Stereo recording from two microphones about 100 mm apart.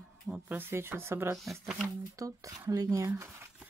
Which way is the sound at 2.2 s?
35° right (ahead or behind).